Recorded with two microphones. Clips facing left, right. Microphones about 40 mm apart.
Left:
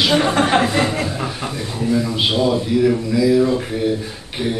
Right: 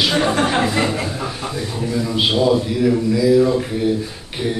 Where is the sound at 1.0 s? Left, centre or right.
Centre.